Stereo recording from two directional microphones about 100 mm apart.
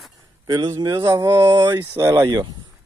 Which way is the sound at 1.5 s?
45° right (ahead or behind).